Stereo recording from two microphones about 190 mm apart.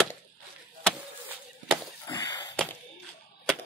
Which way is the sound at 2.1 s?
20° left (ahead or behind).